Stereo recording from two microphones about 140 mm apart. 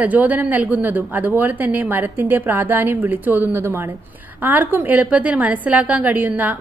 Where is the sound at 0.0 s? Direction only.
10° right (ahead or behind).